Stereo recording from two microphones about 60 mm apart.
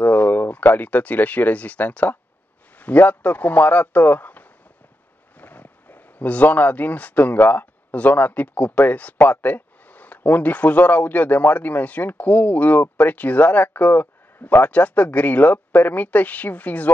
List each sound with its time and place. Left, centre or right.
0.0 s speech: left